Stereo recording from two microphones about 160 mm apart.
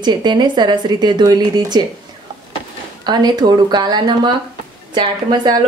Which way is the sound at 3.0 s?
25° right (ahead or behind).